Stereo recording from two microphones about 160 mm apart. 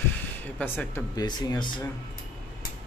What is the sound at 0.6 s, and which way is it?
Speech, 15° left (ahead or behind).